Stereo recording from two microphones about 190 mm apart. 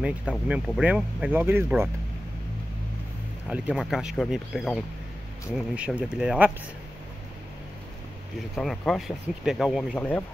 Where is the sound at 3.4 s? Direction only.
5° right (ahead or behind).